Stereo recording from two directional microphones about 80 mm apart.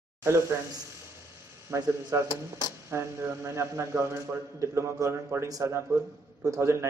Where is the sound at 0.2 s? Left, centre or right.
Right.